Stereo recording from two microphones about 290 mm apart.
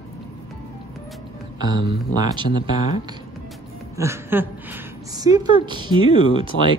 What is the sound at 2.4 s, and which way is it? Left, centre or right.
Speech, left.